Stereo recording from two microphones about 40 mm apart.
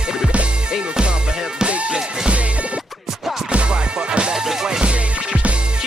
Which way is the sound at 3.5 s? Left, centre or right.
Right.